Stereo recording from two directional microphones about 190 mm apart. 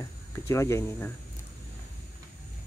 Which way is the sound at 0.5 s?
15° left (ahead or behind).